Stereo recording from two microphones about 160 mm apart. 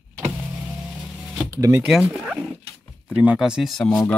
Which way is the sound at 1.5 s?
20° right (ahead or behind).